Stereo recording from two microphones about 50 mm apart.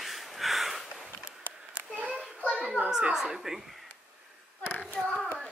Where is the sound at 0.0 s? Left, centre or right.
Centre.